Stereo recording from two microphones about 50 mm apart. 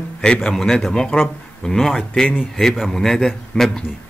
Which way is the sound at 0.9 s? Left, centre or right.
Centre.